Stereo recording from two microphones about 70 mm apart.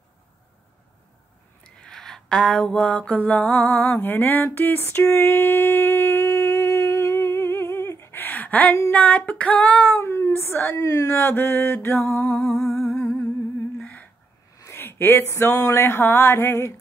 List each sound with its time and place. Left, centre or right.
1.6 s a sound: centre; by 4.5 s left
4.6 s child singing: left
5.0 s a sound: left
8.9 s child singing: centre
10.8 s speech: left
11.1 s music: left
12.4 s music: centre
13.0 s humming: centre
13.7 s a sound: centre
14.8 s speech: left
15.7 s music: left